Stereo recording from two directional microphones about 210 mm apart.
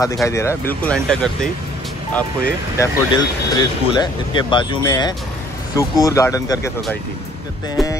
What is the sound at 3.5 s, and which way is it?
Speech, 20° left (ahead or behind).